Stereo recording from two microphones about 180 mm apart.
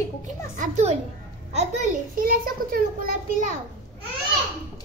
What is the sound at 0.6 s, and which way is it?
A child's voice, 40° right (ahead or behind).